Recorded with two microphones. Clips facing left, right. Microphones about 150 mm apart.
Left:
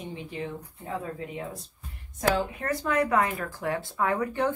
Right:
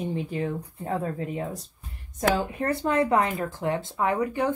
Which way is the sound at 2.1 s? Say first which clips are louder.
Right 2 dB; 30° right (ahead or behind).